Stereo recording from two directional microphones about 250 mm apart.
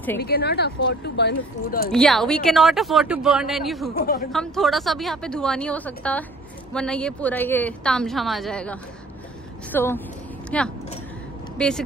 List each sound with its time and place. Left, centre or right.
0.2 s speech: left
1.9 s speech: centre
4.0 s speech: left
4.3 s a woman's voice: centre